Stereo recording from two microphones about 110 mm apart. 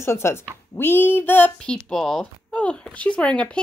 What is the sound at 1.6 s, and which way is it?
Speech, 5° left (ahead or behind).